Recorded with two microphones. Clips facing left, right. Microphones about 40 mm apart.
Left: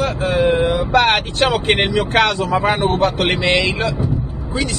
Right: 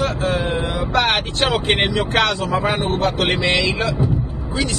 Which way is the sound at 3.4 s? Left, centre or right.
Left.